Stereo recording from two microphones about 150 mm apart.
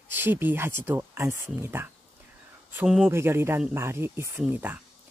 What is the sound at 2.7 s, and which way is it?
Speech, 5° right (ahead or behind).